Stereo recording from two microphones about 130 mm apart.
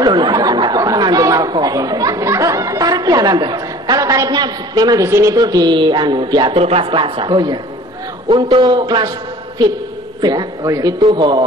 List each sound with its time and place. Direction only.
0.0 s speech: 35° right (ahead or behind)
6.6 s a woman's voice: 45° right (ahead or behind)
10.2 s a woman's voice: 30° right (ahead or behind)